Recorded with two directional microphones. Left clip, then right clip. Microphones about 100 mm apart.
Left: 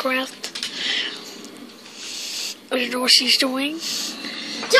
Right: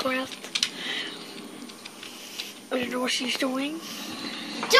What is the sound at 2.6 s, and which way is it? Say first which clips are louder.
Speech: left 8 dB; 40° left (ahead or behind).